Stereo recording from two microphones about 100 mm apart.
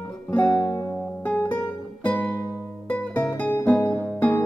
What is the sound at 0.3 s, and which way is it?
Music, 10° left (ahead or behind).